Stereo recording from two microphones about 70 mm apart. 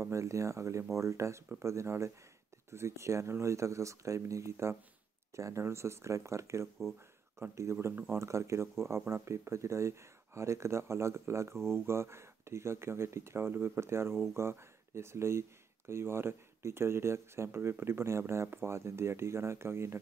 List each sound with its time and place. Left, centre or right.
0.0 s speech: right